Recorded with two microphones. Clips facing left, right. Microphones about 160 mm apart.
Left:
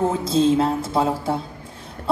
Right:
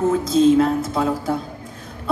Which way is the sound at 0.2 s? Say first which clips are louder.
Right 4 dB; 30° left (ahead or behind).